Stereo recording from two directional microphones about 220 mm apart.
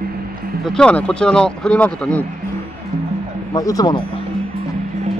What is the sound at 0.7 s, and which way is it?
Speech, 5° left (ahead or behind).